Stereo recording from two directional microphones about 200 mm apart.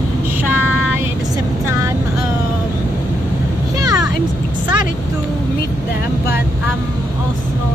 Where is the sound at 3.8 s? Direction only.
20° right (ahead or behind).